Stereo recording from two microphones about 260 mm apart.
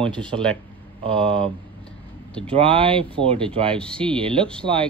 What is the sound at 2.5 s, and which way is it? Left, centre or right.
Speech, centre.